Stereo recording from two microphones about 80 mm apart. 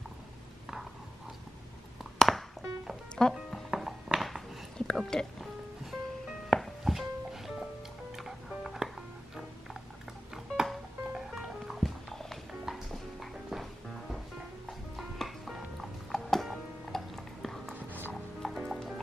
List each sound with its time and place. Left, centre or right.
2.1 s music: centre
10.3 s music: centre
14.7 s music: centre
17.7 s music: right
18.1 s clip-clop: centre